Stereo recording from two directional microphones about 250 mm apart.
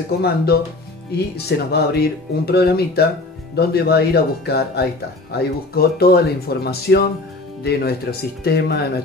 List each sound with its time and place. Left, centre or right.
1.1 s speech: left